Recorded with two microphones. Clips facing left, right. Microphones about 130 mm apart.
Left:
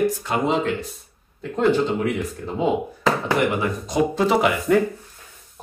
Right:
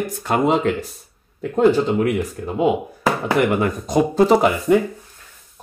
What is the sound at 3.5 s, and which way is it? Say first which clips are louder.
Speech: right 5 dB; 45° right (ahead or behind).